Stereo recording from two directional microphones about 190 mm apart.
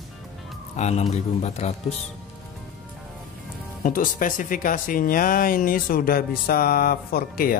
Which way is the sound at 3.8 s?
45° left (ahead or behind).